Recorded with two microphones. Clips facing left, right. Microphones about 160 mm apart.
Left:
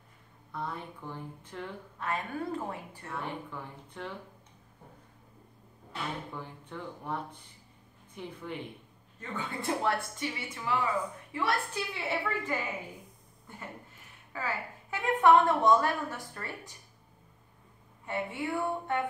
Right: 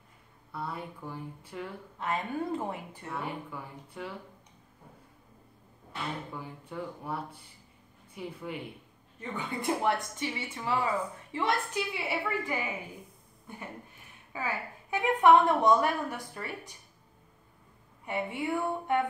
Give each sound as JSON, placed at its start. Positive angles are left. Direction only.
{"t": 0.5, "sound": "a woman's voice", "side_deg": -5}
{"t": 2.0, "sound": "a woman's voice", "side_deg": -20}
{"t": 6.3, "sound": "a woman's voice", "side_deg": -10}
{"t": 14.3, "sound": "a woman's voice", "side_deg": -15}
{"t": 18.0, "sound": "a woman's voice", "side_deg": -15}